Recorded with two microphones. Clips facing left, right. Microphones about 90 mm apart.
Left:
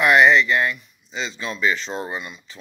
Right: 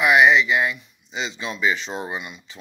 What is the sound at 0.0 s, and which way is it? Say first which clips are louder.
Speech: left 1 dB; 5° right (ahead or behind).